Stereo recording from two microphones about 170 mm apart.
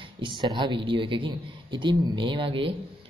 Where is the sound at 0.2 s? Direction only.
25° right (ahead or behind).